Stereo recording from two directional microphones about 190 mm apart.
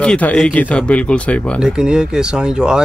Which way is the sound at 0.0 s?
5° left (ahead or behind).